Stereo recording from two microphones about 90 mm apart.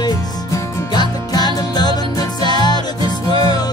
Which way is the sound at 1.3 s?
50° left (ahead or behind).